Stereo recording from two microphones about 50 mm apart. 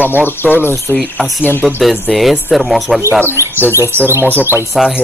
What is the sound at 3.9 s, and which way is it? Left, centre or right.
Speech, right.